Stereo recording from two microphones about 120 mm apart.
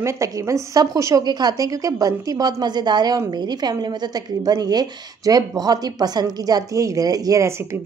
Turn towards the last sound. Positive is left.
turn(degrees=-25)  # may be behind; listen again after turning